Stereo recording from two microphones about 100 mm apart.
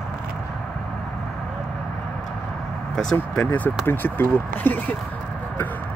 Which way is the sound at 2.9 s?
10° left (ahead or behind).